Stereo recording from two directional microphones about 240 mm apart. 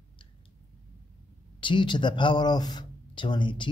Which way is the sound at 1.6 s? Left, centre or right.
Centre.